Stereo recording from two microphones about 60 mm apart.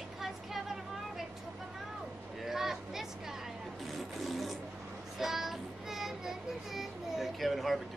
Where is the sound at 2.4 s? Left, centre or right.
Centre.